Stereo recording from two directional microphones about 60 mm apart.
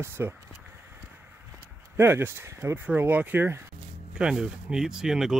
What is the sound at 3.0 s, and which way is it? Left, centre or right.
Speech, right.